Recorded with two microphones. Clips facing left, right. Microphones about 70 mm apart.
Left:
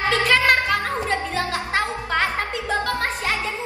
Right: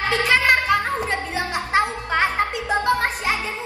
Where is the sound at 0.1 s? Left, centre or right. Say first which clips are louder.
Even; right.